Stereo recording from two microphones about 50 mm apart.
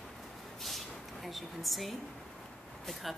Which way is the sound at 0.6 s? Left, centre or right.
Centre.